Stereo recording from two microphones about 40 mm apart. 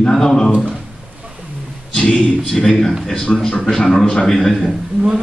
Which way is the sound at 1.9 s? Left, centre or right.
Left.